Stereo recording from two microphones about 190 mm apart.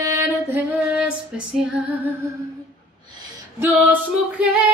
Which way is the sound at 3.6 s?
10° right (ahead or behind).